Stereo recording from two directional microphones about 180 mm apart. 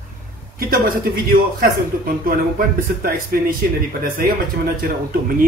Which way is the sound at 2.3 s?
55° right (ahead or behind).